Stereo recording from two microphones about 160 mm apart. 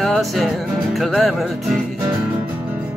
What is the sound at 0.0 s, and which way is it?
Speech, centre (ahead or behind).